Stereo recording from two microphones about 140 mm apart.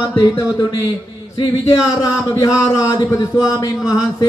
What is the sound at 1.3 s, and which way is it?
A man's voice, 30° left (ahead or behind).